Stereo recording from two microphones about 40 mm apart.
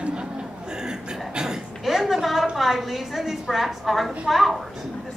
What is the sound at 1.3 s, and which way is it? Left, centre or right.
Cough, centre.